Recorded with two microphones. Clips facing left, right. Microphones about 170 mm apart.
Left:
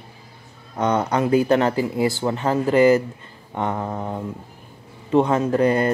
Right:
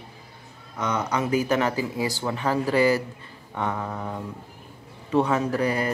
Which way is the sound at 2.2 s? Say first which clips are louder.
Left 4 dB; 25° left (ahead or behind).